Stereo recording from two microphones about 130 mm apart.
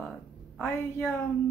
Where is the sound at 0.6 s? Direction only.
15° left (ahead or behind).